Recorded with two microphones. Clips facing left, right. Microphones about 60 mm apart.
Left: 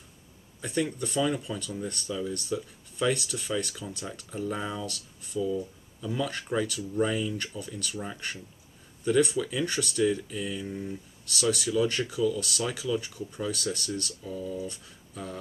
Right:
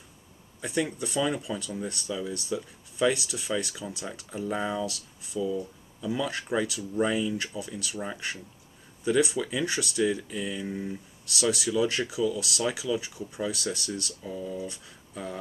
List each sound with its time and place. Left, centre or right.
0.6 s speech: centre
6.0 s speech: centre
10.7 s speech: centre
11.2 s speech: centre